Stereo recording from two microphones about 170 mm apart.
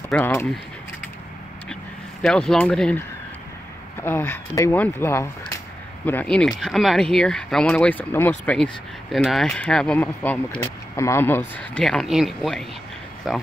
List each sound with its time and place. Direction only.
0.1 s speech: 15° left (ahead or behind)
2.2 s speech: 5° left (ahead or behind)